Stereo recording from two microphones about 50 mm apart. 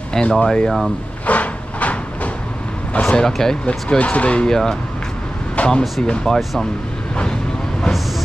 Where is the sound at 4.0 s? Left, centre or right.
Left.